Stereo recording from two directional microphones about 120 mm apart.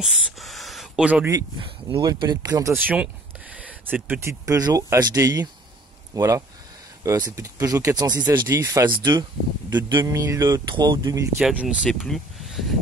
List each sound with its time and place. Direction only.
0.0 s a sound: centre (ahead or behind)
2.0 s speech: 35° right (ahead or behind)
2.7 s speech: 10° right (ahead or behind); by 8.9 s 30° right (ahead or behind)
8.9 s speech: 40° right (ahead or behind)
10.1 s speech: 25° right (ahead or behind)
11.3 s speech: 5° right (ahead or behind)